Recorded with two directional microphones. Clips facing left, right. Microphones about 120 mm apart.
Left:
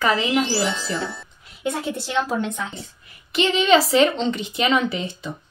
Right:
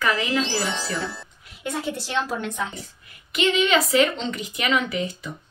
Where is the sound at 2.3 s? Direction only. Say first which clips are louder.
Left 3 dB; 25° left (ahead or behind).